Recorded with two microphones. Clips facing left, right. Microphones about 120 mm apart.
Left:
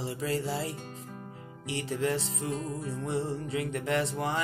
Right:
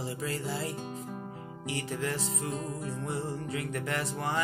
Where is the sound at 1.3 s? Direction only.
25° right (ahead or behind).